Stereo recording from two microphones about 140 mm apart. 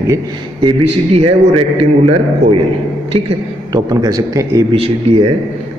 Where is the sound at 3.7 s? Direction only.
25° right (ahead or behind).